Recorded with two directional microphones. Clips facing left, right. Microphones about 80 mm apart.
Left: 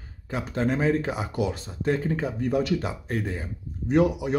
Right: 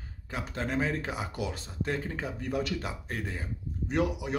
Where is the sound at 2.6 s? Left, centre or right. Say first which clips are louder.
Left 7 dB; centre.